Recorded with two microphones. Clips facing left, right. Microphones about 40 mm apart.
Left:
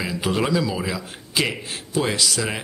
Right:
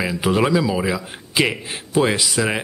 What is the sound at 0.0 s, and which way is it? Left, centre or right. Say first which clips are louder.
A man's voice: right 4 dB; centre.